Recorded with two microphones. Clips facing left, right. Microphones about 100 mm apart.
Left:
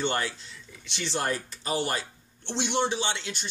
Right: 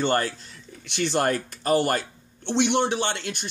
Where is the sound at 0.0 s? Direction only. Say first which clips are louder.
Right 5 dB; 45° right (ahead or behind).